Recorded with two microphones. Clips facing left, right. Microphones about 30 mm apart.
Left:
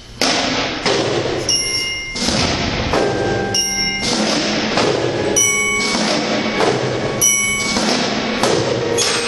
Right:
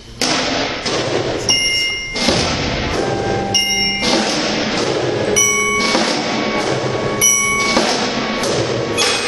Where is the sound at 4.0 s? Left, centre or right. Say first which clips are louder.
Right 2 dB; centre.